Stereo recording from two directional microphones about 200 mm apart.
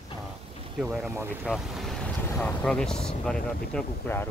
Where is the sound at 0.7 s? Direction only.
Centre (ahead or behind).